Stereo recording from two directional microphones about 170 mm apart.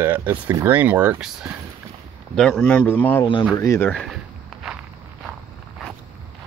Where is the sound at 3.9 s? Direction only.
5° left (ahead or behind).